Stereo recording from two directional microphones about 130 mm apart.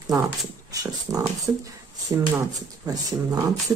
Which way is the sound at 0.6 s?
25° right (ahead or behind).